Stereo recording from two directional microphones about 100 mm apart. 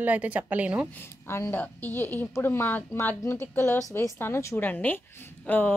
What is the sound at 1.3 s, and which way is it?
A woman's voice, 25° left (ahead or behind).